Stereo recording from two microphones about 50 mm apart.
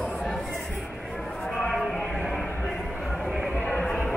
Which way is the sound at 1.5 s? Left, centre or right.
Centre.